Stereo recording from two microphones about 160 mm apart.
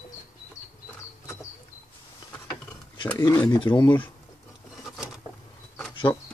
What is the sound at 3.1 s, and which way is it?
Speech, 20° left (ahead or behind).